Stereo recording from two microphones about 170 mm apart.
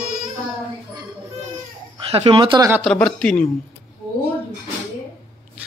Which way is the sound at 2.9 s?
5° left (ahead or behind).